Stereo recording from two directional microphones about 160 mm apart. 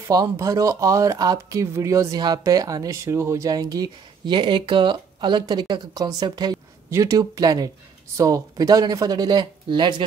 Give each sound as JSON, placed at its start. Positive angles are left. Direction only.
{"t": 0.0, "sound": "speech", "side_deg": -20}